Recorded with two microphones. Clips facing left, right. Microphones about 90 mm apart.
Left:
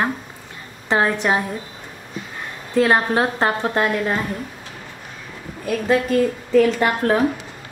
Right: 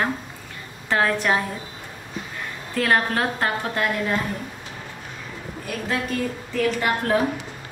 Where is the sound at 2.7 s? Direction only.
20° left (ahead or behind).